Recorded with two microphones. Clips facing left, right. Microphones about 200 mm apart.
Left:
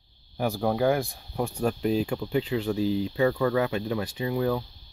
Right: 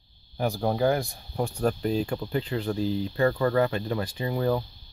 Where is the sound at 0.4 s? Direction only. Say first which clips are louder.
Even; 5° left (ahead or behind).